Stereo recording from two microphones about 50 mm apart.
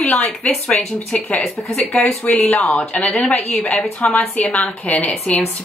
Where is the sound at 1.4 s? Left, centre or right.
Centre.